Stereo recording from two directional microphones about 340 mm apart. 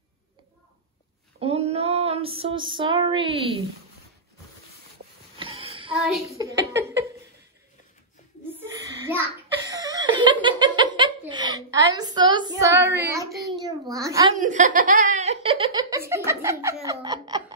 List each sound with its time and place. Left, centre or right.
1.4 s female singing: centre
5.4 s a sound: centre
5.9 s speech: centre
9.7 s laughter: centre
14.3 s speech: right